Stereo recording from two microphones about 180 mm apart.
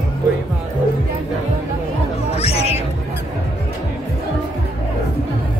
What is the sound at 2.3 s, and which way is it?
Cat, 35° left (ahead or behind).